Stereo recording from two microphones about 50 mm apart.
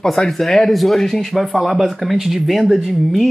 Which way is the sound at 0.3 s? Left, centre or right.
Centre.